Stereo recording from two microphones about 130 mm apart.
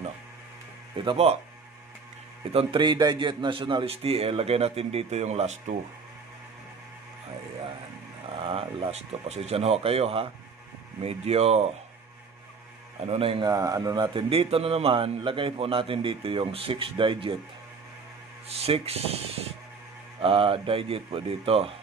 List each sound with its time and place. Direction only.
0.9 s a man's voice: 45° right (ahead or behind)
2.5 s a man's voice: 40° right (ahead or behind); by 5.8 s 55° right (ahead or behind)
8.3 s a man's voice: 45° right (ahead or behind)
13.0 s a man's voice: 50° right (ahead or behind)
13.5 s speech: 25° right (ahead or behind)
14.3 s a man's voice: 45° right (ahead or behind)
18.6 s a man's voice: 50° right (ahead or behind)